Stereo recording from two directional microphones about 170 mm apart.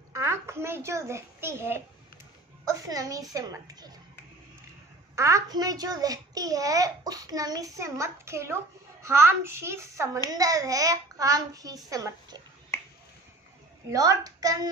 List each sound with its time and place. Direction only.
0.1 s a child's voice: 15° right (ahead or behind)
5.1 s a child's voice: 15° right (ahead or behind)
13.8 s a child's voice: 20° right (ahead or behind)